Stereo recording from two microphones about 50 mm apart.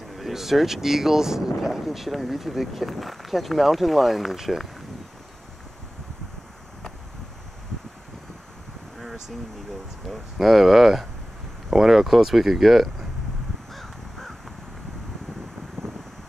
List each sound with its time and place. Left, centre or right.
0.2 s speech: centre
10.0 s speech: centre
13.7 s crow: centre
15.8 s vehicle: right